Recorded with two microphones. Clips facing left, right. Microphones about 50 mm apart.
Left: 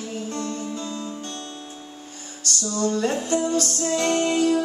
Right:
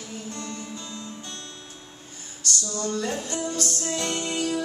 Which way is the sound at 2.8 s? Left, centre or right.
Left.